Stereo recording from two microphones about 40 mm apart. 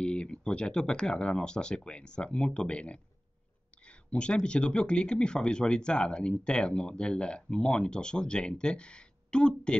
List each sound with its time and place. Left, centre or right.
0.0 s speech: left